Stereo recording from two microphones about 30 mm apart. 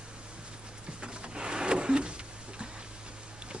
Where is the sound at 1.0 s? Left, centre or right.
Right.